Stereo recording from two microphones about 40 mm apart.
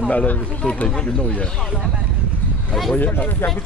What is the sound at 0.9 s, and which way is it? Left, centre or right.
Speech, centre.